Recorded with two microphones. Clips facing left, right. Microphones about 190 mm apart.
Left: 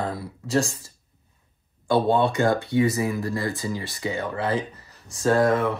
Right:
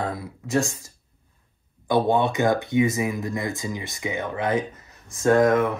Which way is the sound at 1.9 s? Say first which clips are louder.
Even; 15° right (ahead or behind).